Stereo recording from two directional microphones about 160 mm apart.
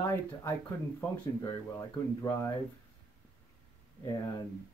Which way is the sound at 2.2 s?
15° left (ahead or behind).